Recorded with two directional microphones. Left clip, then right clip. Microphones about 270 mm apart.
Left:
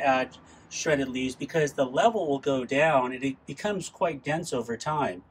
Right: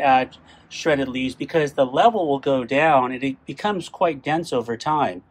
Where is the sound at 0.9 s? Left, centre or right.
Centre.